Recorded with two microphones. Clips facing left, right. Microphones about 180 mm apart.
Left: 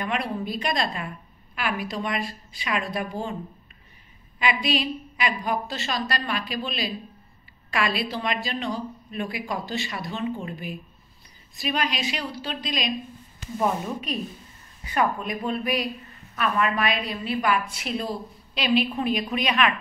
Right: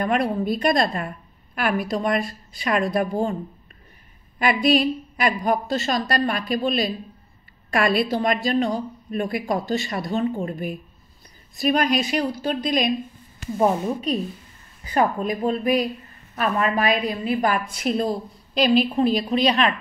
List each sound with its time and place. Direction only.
0.0 s a woman's voice: 45° right (ahead or behind)
4.4 s a woman's voice: 50° right (ahead or behind)
15.0 s a woman's voice: 30° right (ahead or behind)